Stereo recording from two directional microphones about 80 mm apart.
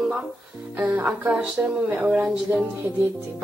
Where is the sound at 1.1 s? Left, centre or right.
Centre.